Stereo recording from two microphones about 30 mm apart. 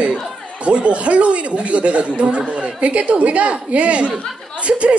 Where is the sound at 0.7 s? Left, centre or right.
Right.